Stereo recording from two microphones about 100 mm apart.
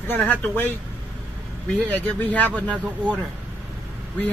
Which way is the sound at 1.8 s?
15° left (ahead or behind).